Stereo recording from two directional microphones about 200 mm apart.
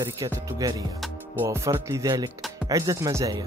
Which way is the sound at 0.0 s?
15° right (ahead or behind).